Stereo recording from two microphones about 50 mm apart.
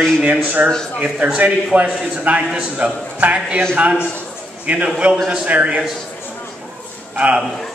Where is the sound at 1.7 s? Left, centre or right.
Right.